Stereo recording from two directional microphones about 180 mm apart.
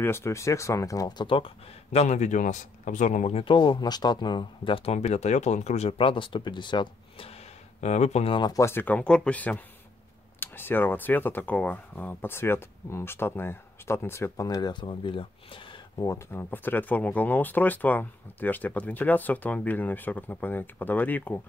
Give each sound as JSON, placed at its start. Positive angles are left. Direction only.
{"t": 0.0, "sound": "speech", "side_deg": 15}